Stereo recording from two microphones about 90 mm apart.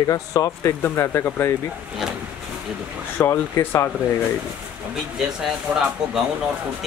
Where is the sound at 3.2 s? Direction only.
25° left (ahead or behind).